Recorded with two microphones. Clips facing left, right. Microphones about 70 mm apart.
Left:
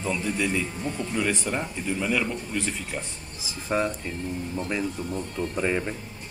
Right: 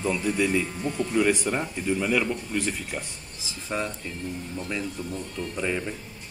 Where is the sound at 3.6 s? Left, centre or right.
Centre.